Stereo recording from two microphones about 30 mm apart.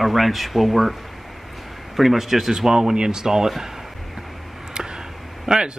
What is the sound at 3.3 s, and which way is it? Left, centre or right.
Speech, centre.